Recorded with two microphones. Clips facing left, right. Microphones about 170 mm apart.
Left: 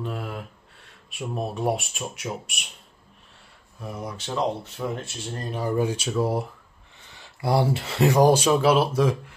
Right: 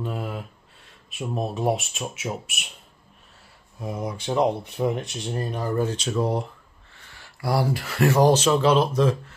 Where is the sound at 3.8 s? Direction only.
10° right (ahead or behind).